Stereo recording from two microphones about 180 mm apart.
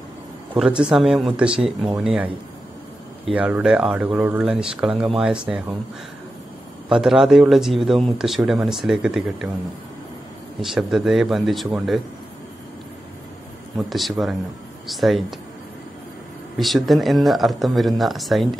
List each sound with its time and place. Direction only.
0.6 s a man's voice: 5° right (ahead or behind)
6.9 s a man's voice: centre (ahead or behind)
10.6 s a man's voice: centre (ahead or behind)
13.7 s a man's voice: centre (ahead or behind)
16.5 s a man's voice: centre (ahead or behind)